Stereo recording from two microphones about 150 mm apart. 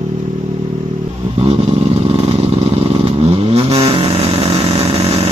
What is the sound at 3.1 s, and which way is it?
Vehicle, 40° right (ahead or behind).